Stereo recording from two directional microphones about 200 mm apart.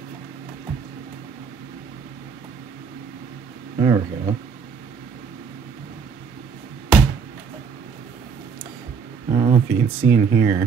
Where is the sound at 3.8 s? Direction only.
20° right (ahead or behind).